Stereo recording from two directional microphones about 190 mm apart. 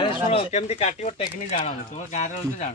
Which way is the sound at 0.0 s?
30° left (ahead or behind).